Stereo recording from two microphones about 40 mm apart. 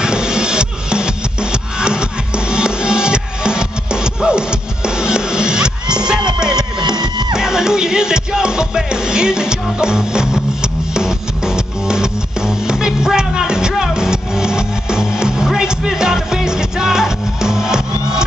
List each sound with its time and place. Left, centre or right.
0.0 s music: centre